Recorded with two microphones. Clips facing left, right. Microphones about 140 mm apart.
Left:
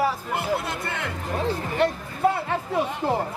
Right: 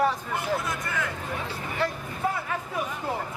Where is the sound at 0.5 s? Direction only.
30° left (ahead or behind).